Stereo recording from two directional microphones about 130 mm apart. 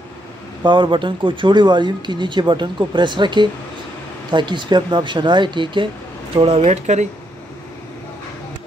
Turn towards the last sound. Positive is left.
turn(degrees=-60)  # may be behind; listen again after turning